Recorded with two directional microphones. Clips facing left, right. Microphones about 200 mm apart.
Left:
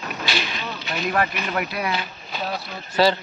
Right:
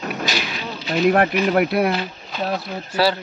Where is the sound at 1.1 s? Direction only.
55° right (ahead or behind).